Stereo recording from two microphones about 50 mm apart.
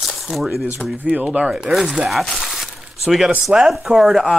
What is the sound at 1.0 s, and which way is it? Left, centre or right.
Speech, right.